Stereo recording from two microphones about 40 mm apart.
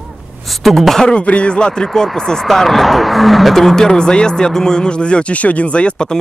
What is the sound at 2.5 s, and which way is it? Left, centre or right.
Speech, centre.